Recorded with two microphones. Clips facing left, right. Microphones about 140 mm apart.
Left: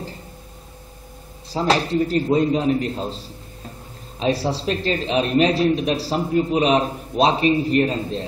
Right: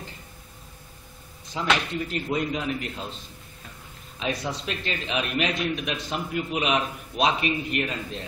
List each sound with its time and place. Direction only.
1.5 s a man's voice: 35° left (ahead or behind)